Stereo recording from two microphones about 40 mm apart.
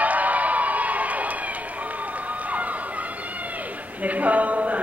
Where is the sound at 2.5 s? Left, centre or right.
Right.